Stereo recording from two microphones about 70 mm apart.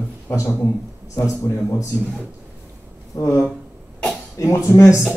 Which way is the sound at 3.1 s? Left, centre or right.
Left.